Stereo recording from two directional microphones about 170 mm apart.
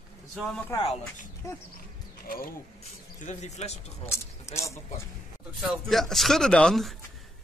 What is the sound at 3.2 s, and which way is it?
Speech, 45° left (ahead or behind).